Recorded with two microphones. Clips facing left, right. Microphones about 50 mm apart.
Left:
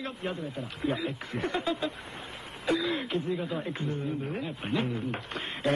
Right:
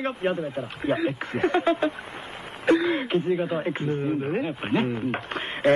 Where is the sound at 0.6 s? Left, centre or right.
Right.